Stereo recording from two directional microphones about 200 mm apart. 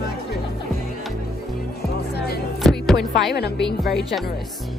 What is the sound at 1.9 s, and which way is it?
Music, 55° left (ahead or behind).